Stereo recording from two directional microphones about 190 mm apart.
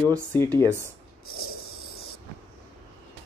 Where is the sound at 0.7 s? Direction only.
15° right (ahead or behind).